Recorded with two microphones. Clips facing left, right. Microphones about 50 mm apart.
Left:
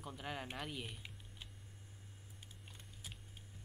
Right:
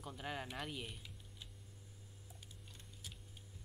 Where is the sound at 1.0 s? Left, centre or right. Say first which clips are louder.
Left 2 dB; left.